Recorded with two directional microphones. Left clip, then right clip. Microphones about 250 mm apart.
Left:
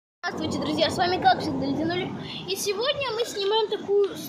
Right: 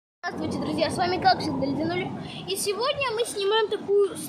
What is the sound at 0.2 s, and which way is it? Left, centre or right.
Speech, centre.